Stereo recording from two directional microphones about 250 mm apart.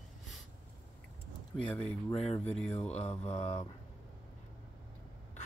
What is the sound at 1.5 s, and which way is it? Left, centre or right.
Speech, centre.